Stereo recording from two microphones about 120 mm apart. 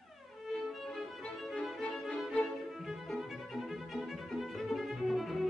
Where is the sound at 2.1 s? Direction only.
5° left (ahead or behind).